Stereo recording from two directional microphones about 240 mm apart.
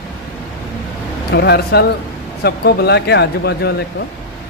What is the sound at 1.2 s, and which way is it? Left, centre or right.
Speech, left.